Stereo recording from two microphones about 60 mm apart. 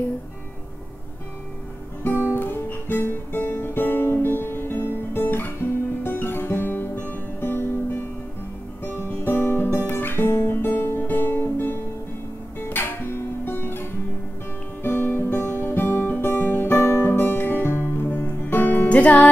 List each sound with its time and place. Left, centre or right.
2.0 s guitar: left
12.5 s music: left
14.8 s guitar: left
18.0 s music: left